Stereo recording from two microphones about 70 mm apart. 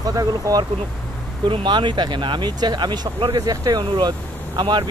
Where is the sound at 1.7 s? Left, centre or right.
Right.